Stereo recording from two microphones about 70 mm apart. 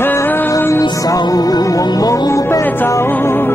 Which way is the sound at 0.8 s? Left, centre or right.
Left.